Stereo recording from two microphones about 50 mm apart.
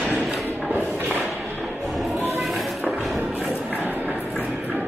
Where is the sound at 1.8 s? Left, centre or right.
Centre.